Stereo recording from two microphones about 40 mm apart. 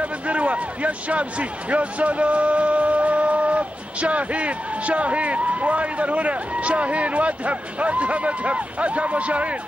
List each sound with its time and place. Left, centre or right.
0.0 s a man's voice: right